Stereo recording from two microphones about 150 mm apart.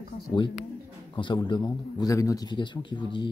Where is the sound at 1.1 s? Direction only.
30° left (ahead or behind).